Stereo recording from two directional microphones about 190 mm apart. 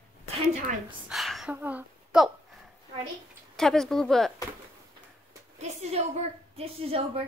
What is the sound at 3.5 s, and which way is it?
Speech, centre (ahead or behind).